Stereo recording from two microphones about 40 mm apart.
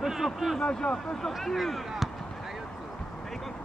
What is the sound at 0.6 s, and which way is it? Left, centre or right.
Speech, left.